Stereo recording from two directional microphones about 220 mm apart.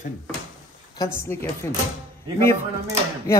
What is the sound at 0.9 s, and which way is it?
Speech, 10° left (ahead or behind).